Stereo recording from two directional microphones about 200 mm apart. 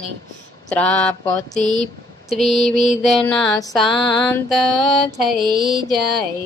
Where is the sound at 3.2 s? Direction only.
15° left (ahead or behind).